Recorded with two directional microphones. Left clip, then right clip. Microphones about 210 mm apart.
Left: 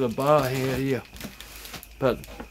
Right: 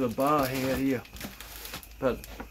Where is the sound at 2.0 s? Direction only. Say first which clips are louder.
Left 5 dB; 55° left (ahead or behind).